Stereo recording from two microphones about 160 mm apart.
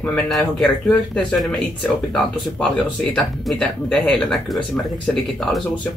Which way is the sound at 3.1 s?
Centre (ahead or behind).